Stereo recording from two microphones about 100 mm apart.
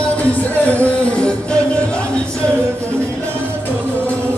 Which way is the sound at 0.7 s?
15° left (ahead or behind).